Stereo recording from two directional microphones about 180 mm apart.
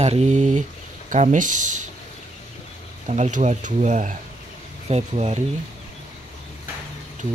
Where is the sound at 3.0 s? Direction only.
40° right (ahead or behind).